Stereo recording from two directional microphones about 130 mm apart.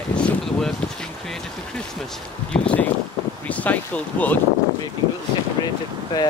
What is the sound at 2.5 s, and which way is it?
Speech, 10° left (ahead or behind).